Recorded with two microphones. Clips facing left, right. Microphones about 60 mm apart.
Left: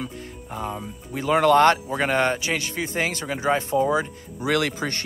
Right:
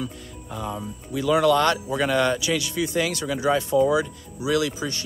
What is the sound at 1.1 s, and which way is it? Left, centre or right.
Speech, left.